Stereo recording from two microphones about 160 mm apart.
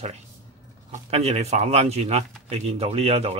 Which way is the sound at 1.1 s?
40° right (ahead or behind).